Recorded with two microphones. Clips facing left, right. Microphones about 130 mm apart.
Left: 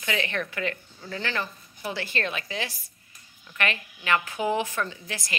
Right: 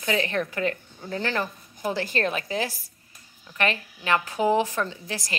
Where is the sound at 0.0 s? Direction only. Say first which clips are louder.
Right 4 dB; 35° right (ahead or behind).